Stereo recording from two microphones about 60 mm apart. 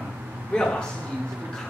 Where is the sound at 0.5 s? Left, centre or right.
Centre.